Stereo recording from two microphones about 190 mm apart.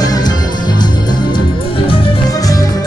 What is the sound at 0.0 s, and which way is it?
Music, 20° left (ahead or behind).